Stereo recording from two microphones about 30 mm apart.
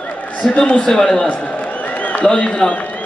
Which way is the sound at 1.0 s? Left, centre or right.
Left.